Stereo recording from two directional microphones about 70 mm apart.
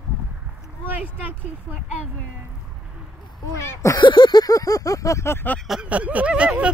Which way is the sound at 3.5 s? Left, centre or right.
Left.